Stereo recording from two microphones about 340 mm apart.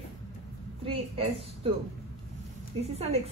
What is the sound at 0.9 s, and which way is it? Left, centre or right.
Speech, centre.